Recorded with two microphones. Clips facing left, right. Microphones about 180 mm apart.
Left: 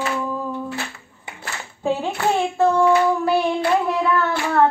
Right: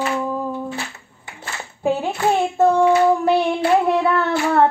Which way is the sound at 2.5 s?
15° right (ahead or behind).